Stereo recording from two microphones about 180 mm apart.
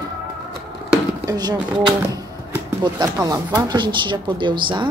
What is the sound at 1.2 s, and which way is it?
A woman's voice, 20° right (ahead or behind).